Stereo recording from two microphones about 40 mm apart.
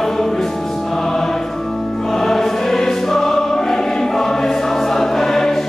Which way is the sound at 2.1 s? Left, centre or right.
Centre.